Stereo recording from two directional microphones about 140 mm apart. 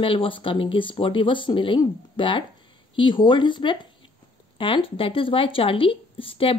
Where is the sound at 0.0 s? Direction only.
40° left (ahead or behind).